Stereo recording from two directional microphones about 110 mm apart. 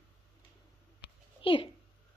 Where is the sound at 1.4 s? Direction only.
55° left (ahead or behind).